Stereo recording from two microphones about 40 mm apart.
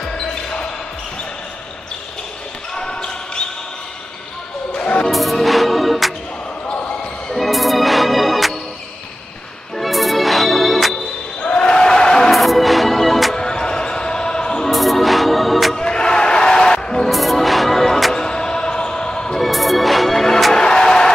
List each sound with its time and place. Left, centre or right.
2.7 s basketball bounce: centre
4.7 s music: left
5.1 s music: centre
7.3 s music: centre
9.8 s music: centre
11.4 s a sound: left
12.3 s music: centre
13.4 s basketball bounce: centre
14.7 s music: centre
15.8 s a sound: left
17.1 s music: centre
18.1 s music: centre
19.3 s music: centre
20.5 s music: centre